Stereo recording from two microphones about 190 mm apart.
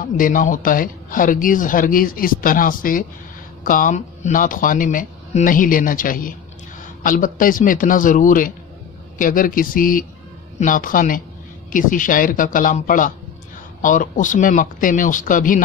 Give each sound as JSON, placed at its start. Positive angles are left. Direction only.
{"t": 0.2, "sound": "speech", "side_deg": 45}